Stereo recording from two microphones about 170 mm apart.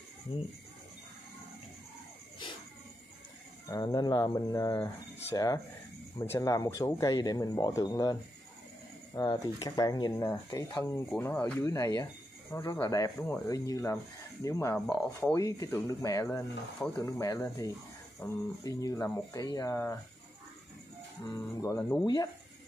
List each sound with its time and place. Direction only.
2.4 s a sound: 30° left (ahead or behind)
3.6 s speech: 20° left (ahead or behind)
21.5 s speech: 15° left (ahead or behind)